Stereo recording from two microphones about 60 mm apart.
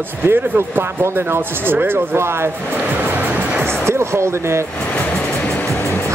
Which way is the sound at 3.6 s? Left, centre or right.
Right.